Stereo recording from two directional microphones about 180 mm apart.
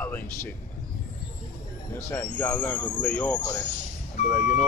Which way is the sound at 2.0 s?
10° left (ahead or behind).